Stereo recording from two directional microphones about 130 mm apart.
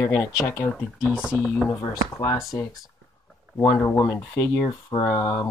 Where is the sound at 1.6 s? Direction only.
25° left (ahead or behind).